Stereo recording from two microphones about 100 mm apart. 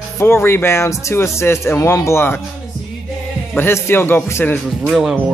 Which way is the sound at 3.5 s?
25° left (ahead or behind).